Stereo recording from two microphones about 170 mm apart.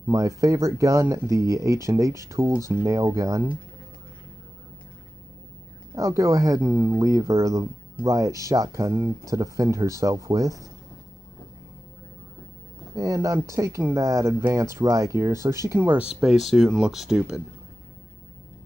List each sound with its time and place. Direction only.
0.4 s speech: 20° right (ahead or behind)
5.9 s speech: 20° right (ahead or behind)
12.9 s speech: 20° right (ahead or behind); by 17.4 s 5° right (ahead or behind)